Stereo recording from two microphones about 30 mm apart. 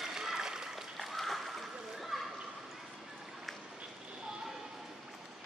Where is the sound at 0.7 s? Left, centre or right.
Centre.